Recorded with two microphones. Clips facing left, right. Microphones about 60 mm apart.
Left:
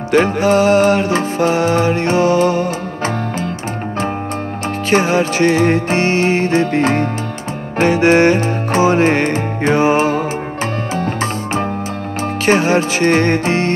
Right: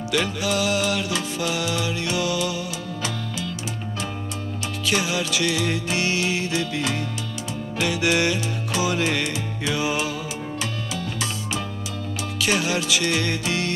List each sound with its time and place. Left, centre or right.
0.1 s music: left
4.8 s music: left